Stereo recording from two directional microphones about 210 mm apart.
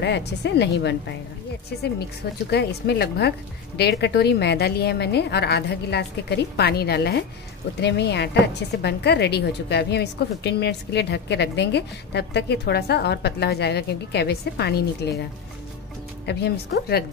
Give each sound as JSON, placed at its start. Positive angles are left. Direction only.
{"t": 0.0, "sound": "a woman's voice", "side_deg": 55}
{"t": 2.5, "sound": "a woman's voice", "side_deg": 50}
{"t": 16.3, "sound": "a woman's voice", "side_deg": 55}